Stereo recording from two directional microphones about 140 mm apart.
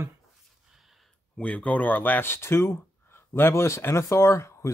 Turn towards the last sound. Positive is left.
turn(degrees=20)  # may be behind; listen again after turning